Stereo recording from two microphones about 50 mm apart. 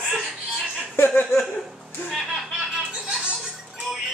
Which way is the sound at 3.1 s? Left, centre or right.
Centre.